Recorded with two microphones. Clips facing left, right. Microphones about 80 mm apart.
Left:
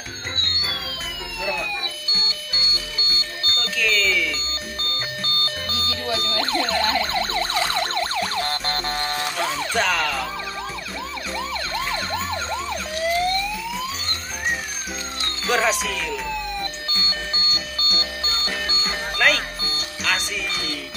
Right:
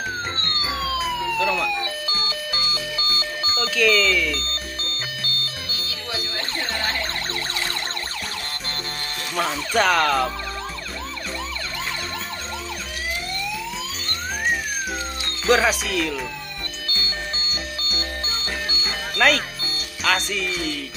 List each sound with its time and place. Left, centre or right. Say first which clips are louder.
2.1 s music: right 4 dB; right
3.4 s ringtone: right 5 dB; centre
6.2 s ambulance: left 6 dB; left
8.2 s music: left 8 dB; left
9.4 s speech: right 4 dB; centre
15.4 s speech: right 3 dB; centre
17.5 s music: left 1 dB; centre
19.1 s speech: right 2 dB; centre